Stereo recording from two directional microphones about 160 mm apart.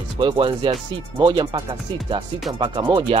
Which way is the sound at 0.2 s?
30° right (ahead or behind).